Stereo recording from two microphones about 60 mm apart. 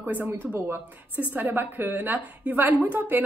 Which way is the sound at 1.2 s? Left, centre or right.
Right.